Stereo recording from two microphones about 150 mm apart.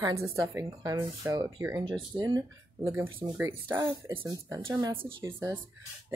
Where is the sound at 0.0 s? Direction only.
20° right (ahead or behind).